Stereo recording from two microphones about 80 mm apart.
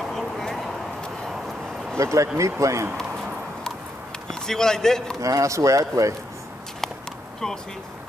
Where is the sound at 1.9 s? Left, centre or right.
Right.